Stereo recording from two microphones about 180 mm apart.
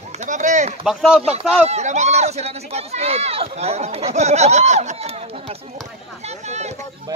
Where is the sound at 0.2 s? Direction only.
40° right (ahead or behind).